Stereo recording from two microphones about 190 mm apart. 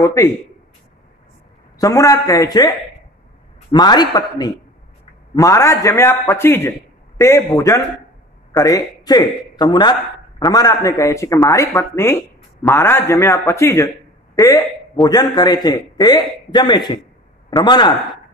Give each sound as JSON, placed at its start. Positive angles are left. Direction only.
{"t": 0.0, "sound": "speech", "side_deg": 15}
{"t": 1.8, "sound": "speech", "side_deg": 15}
{"t": 3.7, "sound": "speech", "side_deg": 20}